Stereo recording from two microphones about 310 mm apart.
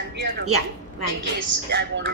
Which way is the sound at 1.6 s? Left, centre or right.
Right.